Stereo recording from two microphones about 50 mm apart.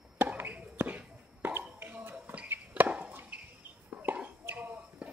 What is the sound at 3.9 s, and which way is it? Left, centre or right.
Chicken, right.